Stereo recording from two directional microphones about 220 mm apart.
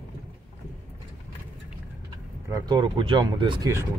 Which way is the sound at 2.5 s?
15° right (ahead or behind).